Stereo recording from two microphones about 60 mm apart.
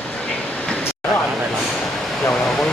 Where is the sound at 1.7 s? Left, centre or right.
Centre.